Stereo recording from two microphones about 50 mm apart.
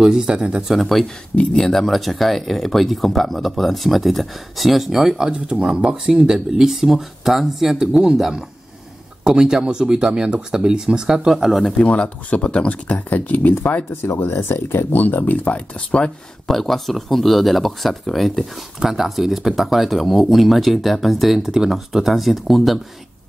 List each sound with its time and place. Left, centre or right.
0.0 s speech: centre
0.7 s speech: centre
11.8 s speech: left
13.1 s speech: left
14.1 s speech: left
16.4 s speech: centre